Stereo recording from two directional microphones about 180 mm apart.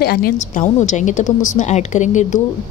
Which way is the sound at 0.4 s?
40° left (ahead or behind).